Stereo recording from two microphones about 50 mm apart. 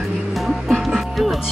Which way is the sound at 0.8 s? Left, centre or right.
Centre.